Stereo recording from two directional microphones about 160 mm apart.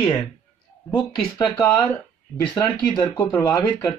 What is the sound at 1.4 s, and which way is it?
Speech, 25° left (ahead or behind).